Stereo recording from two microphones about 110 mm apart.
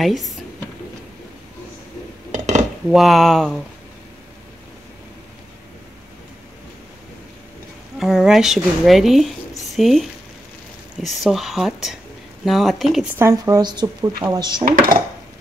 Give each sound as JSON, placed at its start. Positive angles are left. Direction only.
{"t": 0.0, "sound": "speech", "side_deg": 0}
{"t": 2.3, "sound": "dishes", "side_deg": -90}
{"t": 2.9, "sound": "speech", "side_deg": 0}
{"t": 8.0, "sound": "a woman's voice", "side_deg": -5}
{"t": 13.2, "sound": "speech", "side_deg": -25}
{"t": 13.6, "sound": "speech", "side_deg": -40}